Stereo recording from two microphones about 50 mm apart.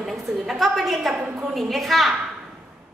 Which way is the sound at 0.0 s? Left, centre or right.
Centre.